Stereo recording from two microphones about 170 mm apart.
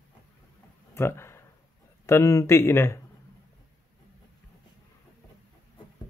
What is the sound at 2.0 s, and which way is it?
Speech, 15° left (ahead or behind).